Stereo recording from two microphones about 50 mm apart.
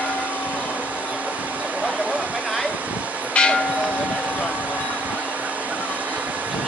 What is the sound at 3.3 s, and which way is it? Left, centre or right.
Church bell, left.